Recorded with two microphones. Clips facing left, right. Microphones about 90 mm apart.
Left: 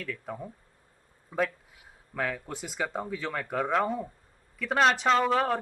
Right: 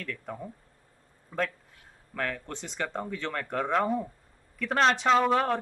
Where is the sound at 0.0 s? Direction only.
5° left (ahead or behind).